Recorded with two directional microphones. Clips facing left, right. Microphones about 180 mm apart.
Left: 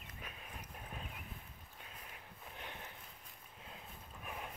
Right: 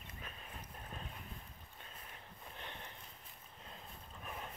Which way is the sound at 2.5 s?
10° left (ahead or behind).